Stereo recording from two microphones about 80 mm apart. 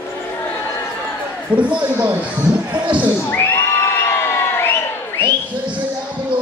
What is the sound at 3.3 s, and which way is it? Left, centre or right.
Cheering, left.